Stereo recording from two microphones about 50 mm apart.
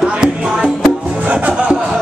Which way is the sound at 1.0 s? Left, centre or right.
Right.